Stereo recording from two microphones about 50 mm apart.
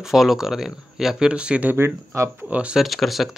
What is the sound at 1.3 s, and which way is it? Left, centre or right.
Speech, right.